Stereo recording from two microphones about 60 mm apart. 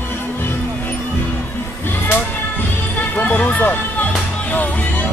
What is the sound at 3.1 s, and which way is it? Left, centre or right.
Music, left.